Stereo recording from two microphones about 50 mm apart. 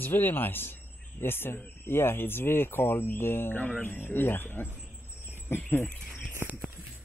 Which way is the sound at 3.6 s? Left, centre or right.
Left.